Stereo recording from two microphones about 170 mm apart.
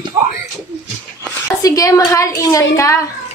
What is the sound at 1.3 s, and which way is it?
A woman's voice, 20° left (ahead or behind).